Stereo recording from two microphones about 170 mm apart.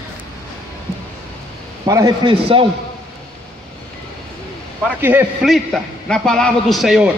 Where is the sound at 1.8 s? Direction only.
20° right (ahead or behind).